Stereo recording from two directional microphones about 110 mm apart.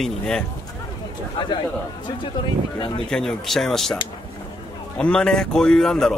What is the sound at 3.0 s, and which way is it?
Speech, 5° left (ahead or behind).